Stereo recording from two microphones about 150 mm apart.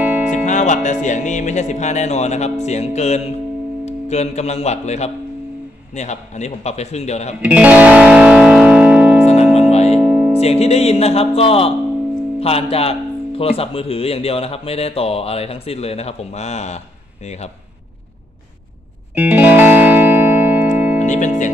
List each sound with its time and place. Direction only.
0.0 s music: 10° right (ahead or behind)
0.5 s speech: 55° left (ahead or behind)
7.4 s music: 10° right (ahead or behind)
9.6 s music: 45° left (ahead or behind)
9.9 s music: 5° right (ahead or behind)
10.4 s speech: 45° left (ahead or behind)
19.1 s music: 10° right (ahead or behind)
21.0 s music: 55° left (ahead or behind)